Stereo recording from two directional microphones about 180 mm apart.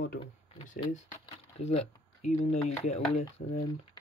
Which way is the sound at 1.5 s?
40° left (ahead or behind).